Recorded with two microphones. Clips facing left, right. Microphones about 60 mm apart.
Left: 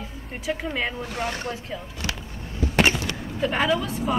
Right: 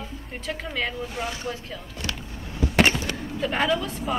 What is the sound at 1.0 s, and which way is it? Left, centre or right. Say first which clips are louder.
Speech: left 2 dB; left.